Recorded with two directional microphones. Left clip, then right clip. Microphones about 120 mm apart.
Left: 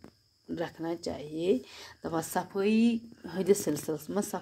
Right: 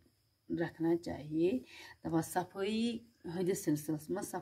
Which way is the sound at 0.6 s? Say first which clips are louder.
Right 1 dB; 35° left (ahead or behind).